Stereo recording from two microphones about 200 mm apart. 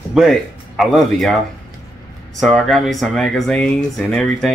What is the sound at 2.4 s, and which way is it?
Speech, centre (ahead or behind).